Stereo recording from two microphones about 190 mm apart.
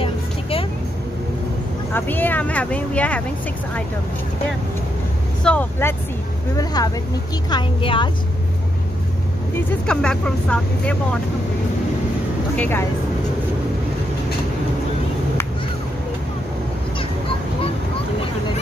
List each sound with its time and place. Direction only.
0.0 s vehicle: 30° left (ahead or behind)
2.0 s speech: 10° left (ahead or behind)
5.4 s a woman's voice: 5° left (ahead or behind); by 8.1 s 25° left (ahead or behind)
9.8 s speech: 5° left (ahead or behind)
12.5 s speech: 10° left (ahead or behind)